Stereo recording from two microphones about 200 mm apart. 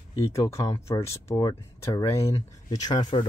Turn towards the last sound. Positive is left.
turn(degrees=20)  # may be behind; listen again after turning